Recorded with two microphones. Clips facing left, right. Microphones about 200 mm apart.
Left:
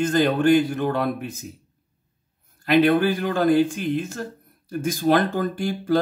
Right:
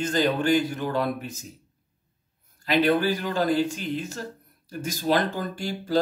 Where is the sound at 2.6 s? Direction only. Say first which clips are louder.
Left 4 dB; 55° left (ahead or behind).